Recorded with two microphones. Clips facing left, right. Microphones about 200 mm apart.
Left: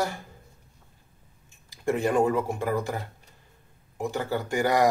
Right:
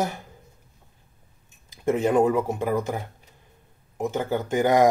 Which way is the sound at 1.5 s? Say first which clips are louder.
Right 3 dB; 20° right (ahead or behind).